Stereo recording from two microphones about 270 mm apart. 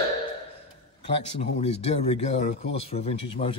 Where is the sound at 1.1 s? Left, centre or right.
Left.